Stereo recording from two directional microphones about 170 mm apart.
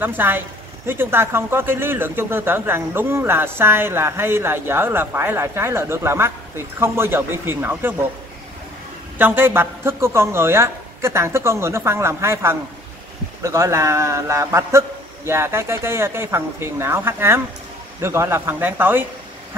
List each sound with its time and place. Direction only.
0.0 s speech: 10° right (ahead or behind)
9.2 s speech: 10° right (ahead or behind)